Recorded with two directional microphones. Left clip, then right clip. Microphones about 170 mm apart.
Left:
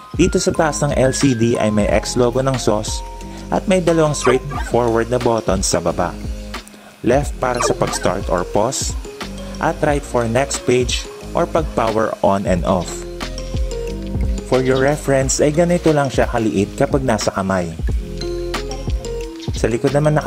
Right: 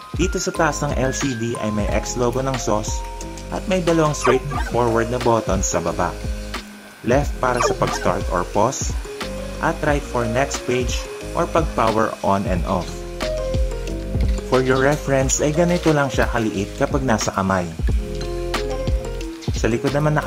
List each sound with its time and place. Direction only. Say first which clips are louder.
0.2 s speech: left 4 dB; 40° left (ahead or behind)
1.1 s speech: left 6 dB; centre (ahead or behind)
1.6 s speech: left 7 dB; 50° left (ahead or behind)
4.2 s speech: left 2 dB; centre (ahead or behind)
4.7 s speech: left 3 dB; 50° left (ahead or behind)
7.5 s speech: left 2 dB; centre (ahead or behind)
8.0 s speech: left 2 dB; 45° left (ahead or behind)
14.6 s speech: left 1 dB; 40° left (ahead or behind)
20.0 s speech: left 5 dB; 35° left (ahead or behind)